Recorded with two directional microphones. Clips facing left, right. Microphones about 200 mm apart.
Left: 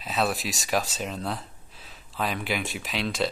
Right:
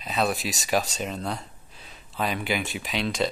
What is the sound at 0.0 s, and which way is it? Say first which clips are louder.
Speech: right 1 dB; centre (ahead or behind).